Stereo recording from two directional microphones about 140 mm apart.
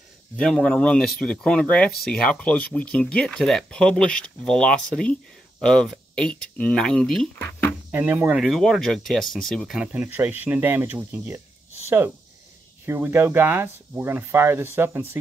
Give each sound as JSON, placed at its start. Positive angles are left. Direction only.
{"t": 0.4, "sound": "speech", "side_deg": 5}
{"t": 7.3, "sound": "a sound", "side_deg": 15}
{"t": 7.9, "sound": "speech", "side_deg": -15}
{"t": 8.4, "sound": "speech", "side_deg": 0}
{"t": 12.8, "sound": "speech", "side_deg": -20}